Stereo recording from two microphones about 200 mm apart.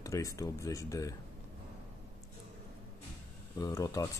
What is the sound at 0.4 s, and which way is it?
Speech, 15° left (ahead or behind).